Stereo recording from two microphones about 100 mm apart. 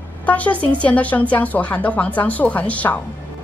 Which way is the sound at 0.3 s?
15° left (ahead or behind).